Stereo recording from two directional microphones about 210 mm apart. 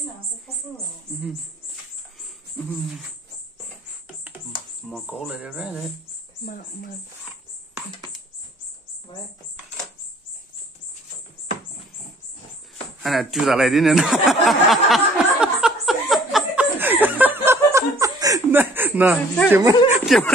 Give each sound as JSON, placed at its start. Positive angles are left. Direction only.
{"t": 4.8, "sound": "speech", "side_deg": 0}
{"t": 6.4, "sound": "speech", "side_deg": 45}
{"t": 13.0, "sound": "a sound", "side_deg": 0}
{"t": 17.0, "sound": "chuckle", "side_deg": -10}
{"t": 19.1, "sound": "speech", "side_deg": 5}
{"t": 19.5, "sound": "speech", "side_deg": -15}
{"t": 20.1, "sound": "speech", "side_deg": 0}